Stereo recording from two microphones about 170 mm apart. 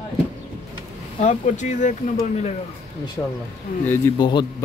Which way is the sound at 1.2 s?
45° left (ahead or behind).